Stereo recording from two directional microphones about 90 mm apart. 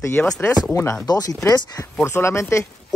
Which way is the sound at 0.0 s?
25° left (ahead or behind).